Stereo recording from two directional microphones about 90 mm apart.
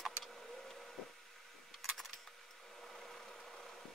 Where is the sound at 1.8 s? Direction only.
Centre (ahead or behind).